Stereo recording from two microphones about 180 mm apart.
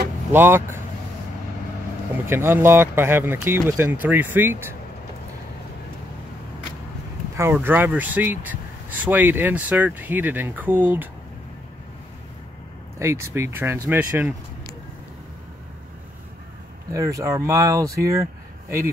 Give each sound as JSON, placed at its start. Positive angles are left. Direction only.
{"t": 0.3, "sound": "speech", "side_deg": -10}
{"t": 2.2, "sound": "speech", "side_deg": -15}
{"t": 7.3, "sound": "speech", "side_deg": -10}
{"t": 13.0, "sound": "speech", "side_deg": -15}
{"t": 16.9, "sound": "speech", "side_deg": -15}